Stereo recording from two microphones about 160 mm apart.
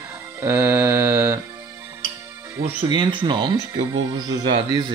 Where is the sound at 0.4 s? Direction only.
15° right (ahead or behind).